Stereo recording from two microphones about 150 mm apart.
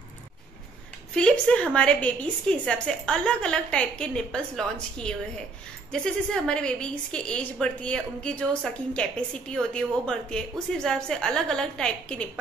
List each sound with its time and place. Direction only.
1.1 s a woman's voice: 5° left (ahead or behind)
5.9 s a woman's voice: 5° left (ahead or behind)